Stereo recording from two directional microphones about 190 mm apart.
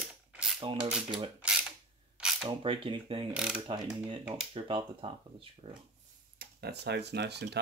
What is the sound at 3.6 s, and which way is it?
Speech, 25° right (ahead or behind).